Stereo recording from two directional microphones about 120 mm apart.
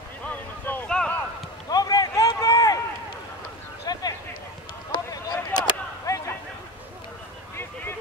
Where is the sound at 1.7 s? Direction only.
30° left (ahead or behind).